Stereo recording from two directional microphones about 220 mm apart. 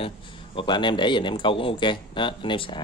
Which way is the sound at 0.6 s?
20° left (ahead or behind).